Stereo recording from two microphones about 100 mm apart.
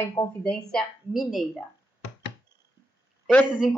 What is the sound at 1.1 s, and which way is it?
Speech, centre (ahead or behind).